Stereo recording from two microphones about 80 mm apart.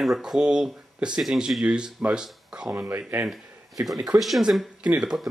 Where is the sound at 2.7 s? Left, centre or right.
Right.